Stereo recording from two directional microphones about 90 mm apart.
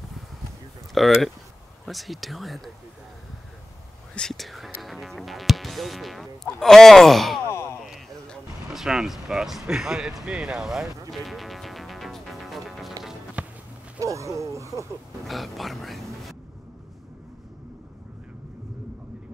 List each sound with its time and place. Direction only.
0.9 s speech: centre (ahead or behind)
4.1 s speech: 5° left (ahead or behind)
7.4 s a sound: 30° left (ahead or behind)
8.7 s speech: 5° right (ahead or behind)
13.4 s walk: 15° right (ahead or behind)
13.9 s speech: 35° right (ahead or behind)
15.2 s speech: centre (ahead or behind)